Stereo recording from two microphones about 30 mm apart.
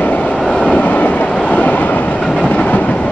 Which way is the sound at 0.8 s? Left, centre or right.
Left.